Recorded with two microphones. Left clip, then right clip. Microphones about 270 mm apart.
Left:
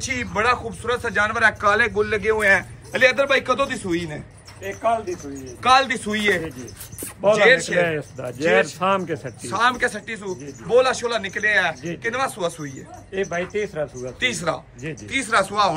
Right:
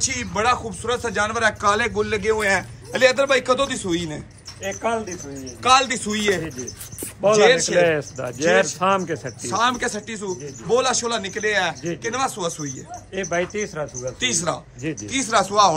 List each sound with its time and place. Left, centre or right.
0.0 s a man's voice: centre
5.6 s speech: centre
13.1 s speech: right
14.2 s speech: centre